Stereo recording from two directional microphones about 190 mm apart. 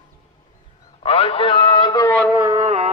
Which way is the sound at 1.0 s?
30° left (ahead or behind).